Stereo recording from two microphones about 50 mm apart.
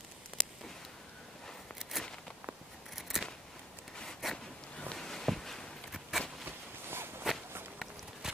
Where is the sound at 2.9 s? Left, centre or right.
Centre.